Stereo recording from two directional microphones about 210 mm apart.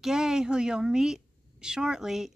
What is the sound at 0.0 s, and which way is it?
Speech, 5° right (ahead or behind).